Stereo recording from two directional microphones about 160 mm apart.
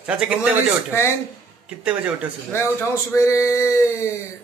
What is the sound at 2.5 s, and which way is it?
Speech, 15° left (ahead or behind).